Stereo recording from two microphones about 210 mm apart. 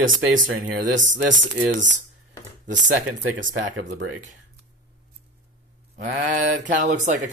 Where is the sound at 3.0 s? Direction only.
70° right (ahead or behind).